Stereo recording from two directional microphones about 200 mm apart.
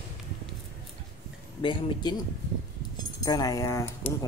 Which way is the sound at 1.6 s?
20° left (ahead or behind).